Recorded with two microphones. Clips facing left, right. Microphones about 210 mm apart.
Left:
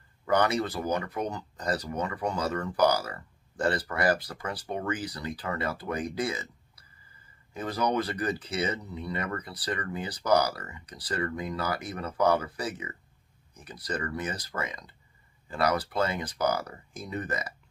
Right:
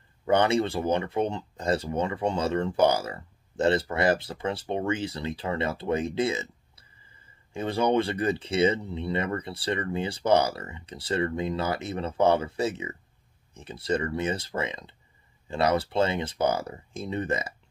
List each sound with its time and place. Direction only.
0.2 s speech: 25° right (ahead or behind)